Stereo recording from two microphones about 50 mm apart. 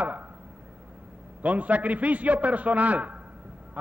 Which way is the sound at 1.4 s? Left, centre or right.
Right.